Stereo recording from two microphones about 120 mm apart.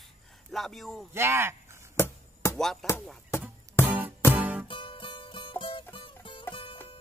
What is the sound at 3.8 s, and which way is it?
Music, 15° right (ahead or behind).